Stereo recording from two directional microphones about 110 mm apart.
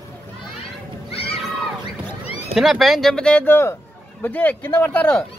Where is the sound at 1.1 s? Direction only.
60° left (ahead or behind).